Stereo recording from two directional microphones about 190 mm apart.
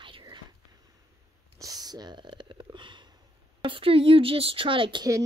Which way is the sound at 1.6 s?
20° right (ahead or behind).